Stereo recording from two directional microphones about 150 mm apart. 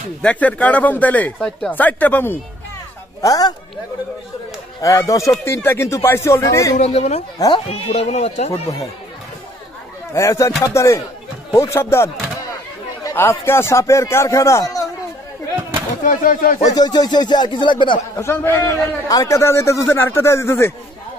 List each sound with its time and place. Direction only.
0.2 s a man's voice: 10° left (ahead or behind)
3.2 s a man's voice: 25° left (ahead or behind)
4.8 s a man's voice: 20° left (ahead or behind)
6.8 s speech: 45° left (ahead or behind)
7.3 s a man's voice: 25° left (ahead or behind)
7.6 s speech: 45° left (ahead or behind)
10.1 s a man's voice: 20° left (ahead or behind)
16.0 s speech: 60° left (ahead or behind)
16.5 s a man's voice: 25° left (ahead or behind)
18.2 s a man's voice: 15° left (ahead or behind)